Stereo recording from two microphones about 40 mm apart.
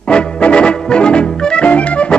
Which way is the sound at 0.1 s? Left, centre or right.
Left.